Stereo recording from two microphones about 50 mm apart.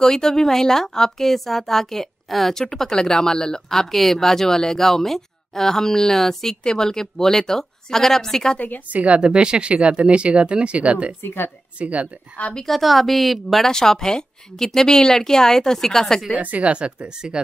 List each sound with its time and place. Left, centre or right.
0.0 s speech: centre
8.5 s a woman's voice: left
8.9 s speech: right
11.2 s speech: left
11.8 s speech: right
12.6 s a woman's voice: centre
13.7 s speech: centre
16.3 s speech: right